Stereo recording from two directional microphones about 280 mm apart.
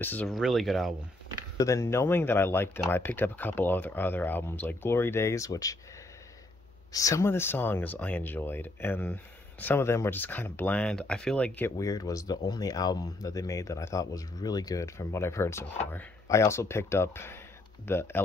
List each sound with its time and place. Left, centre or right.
0.0 s speech: centre
6.9 s speech: centre